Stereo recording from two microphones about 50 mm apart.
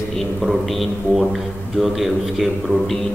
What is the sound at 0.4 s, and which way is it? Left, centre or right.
A man's voice, centre.